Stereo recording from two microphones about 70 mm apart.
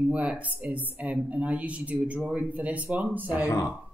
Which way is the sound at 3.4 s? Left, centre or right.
Left.